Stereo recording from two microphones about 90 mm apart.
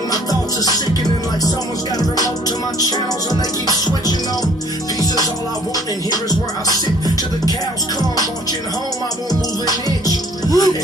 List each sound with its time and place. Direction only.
0.1 s music: 45° left (ahead or behind)
2.0 s music: 45° left (ahead or behind)
5.0 s music: 45° left (ahead or behind)
9.3 s music: 45° left (ahead or behind)